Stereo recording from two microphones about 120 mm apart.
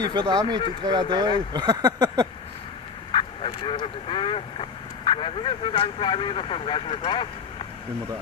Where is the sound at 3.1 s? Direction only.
45° left (ahead or behind).